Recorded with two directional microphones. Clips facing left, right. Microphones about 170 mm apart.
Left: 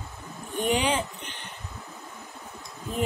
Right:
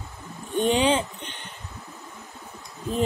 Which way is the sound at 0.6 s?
25° right (ahead or behind).